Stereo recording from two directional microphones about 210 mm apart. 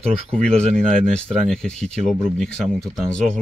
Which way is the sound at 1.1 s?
5° left (ahead or behind).